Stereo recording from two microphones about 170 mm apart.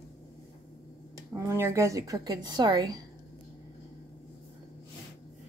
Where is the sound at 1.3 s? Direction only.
15° right (ahead or behind).